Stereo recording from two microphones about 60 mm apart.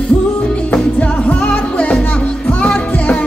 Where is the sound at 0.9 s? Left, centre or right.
Left.